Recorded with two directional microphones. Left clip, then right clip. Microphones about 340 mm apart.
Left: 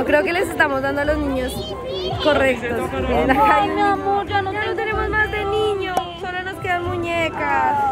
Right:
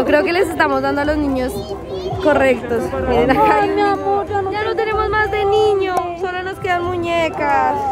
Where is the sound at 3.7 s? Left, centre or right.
Right.